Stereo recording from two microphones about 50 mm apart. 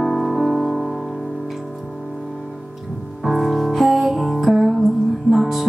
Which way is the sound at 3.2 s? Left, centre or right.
Centre.